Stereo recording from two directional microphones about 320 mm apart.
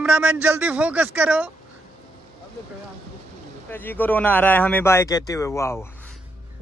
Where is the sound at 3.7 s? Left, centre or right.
Centre.